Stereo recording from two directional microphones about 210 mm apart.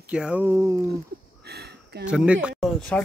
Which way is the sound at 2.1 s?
5° right (ahead or behind).